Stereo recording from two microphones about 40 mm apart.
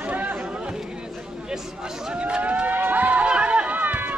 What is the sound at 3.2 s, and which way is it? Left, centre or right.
Chatter, right.